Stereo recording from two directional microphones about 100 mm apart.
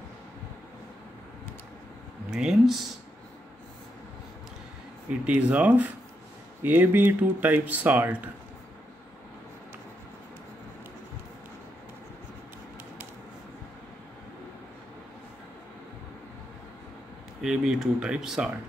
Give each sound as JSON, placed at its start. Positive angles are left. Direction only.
{"t": 2.3, "sound": "speech", "side_deg": -5}
{"t": 5.2, "sound": "speech", "side_deg": -10}
{"t": 17.4, "sound": "speech", "side_deg": -5}